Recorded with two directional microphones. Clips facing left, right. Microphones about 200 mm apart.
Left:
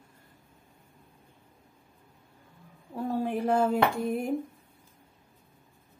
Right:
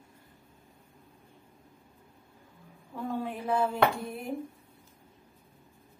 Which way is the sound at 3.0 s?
45° left (ahead or behind).